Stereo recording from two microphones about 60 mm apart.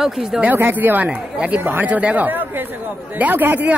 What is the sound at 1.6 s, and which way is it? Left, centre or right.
Speech, right.